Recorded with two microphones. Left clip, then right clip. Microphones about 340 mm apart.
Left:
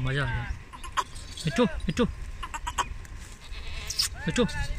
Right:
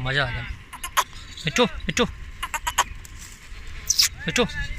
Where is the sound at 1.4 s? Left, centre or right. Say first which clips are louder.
Right 5 dB; centre.